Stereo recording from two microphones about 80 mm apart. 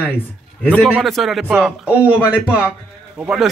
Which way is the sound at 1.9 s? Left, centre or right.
Centre.